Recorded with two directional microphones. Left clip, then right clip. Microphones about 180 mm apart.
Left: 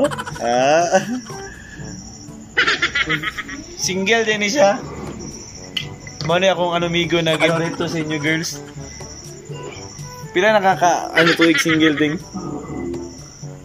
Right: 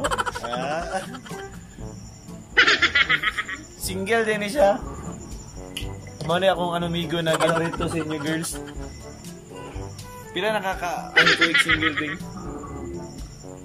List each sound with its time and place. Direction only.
0.0 s sheep: centre (ahead or behind)
0.5 s speech: 45° left (ahead or behind)
2.5 s snicker: centre (ahead or behind)
3.8 s speech: 15° left (ahead or behind)
6.2 s speech: 5° left (ahead or behind)
10.3 s speech: 15° left (ahead or behind)
10.6 s speech: 30° left (ahead or behind)
11.1 s speech: centre (ahead or behind)